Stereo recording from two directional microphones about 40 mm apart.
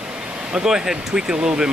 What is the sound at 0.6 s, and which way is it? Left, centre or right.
Speech, centre.